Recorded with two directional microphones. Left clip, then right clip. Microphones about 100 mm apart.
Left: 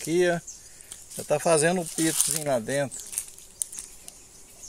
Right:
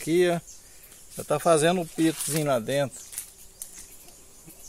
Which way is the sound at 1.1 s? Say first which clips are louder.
Right 1 dB; 20° right (ahead or behind).